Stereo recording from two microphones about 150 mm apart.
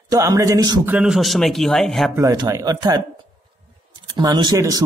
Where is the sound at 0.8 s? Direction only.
5° right (ahead or behind).